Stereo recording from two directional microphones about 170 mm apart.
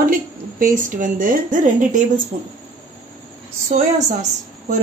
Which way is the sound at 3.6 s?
45° right (ahead or behind).